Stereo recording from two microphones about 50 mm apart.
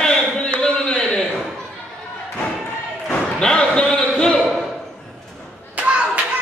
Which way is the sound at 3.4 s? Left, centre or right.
Centre.